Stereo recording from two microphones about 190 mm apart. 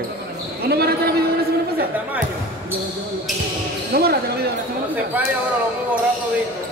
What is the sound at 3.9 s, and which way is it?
Basketball bounce, 55° right (ahead or behind).